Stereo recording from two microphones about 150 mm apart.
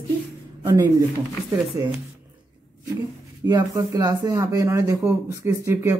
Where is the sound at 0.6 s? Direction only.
15° right (ahead or behind).